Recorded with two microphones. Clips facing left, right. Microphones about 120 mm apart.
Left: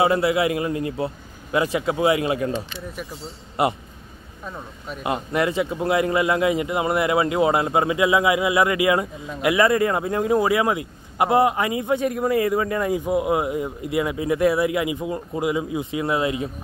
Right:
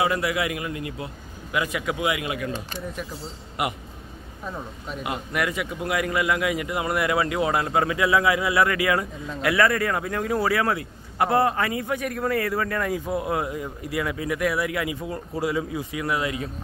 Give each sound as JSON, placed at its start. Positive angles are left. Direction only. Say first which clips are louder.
{"t": 0.0, "sound": "a man's voice", "louder": "left 5 dB", "side_deg": 25}
{"t": 3.6, "sound": "a man's voice", "louder": "left 6 dB", "side_deg": 30}
{"t": 4.5, "sound": "speech", "louder": "even", "side_deg": 0}
{"t": 5.0, "sound": "speech", "louder": "left 5 dB", "side_deg": 25}